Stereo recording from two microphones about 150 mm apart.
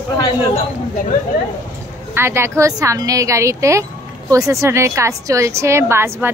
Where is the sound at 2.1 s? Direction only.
15° right (ahead or behind).